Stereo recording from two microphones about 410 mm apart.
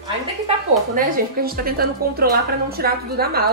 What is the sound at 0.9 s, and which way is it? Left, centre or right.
A woman's voice, right.